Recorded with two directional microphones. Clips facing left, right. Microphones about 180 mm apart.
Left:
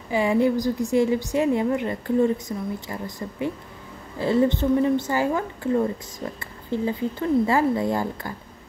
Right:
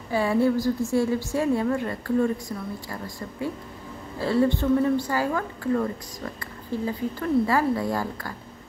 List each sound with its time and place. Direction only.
0.1 s speech: 15° left (ahead or behind)